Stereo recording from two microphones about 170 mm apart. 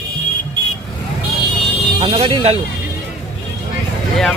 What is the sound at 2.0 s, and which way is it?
Speech, 30° right (ahead or behind).